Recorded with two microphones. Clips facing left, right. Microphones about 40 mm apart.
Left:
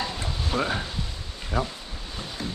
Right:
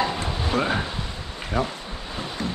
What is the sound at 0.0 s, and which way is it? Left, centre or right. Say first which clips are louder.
Stir: right 6 dB; right.